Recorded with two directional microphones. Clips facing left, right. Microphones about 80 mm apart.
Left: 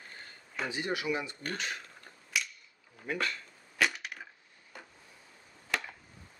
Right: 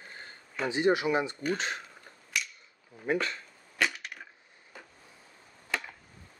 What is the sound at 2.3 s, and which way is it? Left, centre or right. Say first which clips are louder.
Cap gun: even; centre.